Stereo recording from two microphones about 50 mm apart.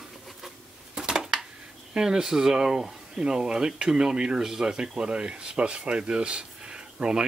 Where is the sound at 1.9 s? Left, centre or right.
Centre.